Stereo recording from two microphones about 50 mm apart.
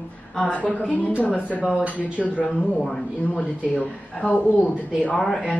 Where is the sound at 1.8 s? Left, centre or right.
Right.